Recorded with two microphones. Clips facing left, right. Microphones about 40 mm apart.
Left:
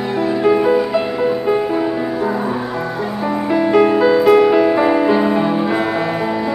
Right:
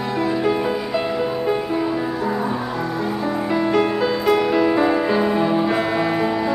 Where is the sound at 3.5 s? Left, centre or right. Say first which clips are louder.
Left 7 dB; centre.